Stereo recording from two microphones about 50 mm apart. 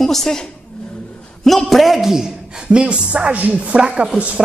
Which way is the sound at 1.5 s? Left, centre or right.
Centre.